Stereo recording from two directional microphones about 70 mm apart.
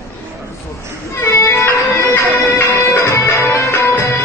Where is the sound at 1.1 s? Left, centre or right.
Left.